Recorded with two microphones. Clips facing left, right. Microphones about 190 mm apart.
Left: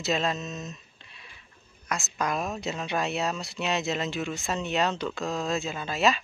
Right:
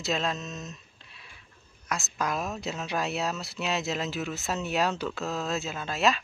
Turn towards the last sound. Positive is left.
turn(degrees=0)  # may be behind; listen again after turning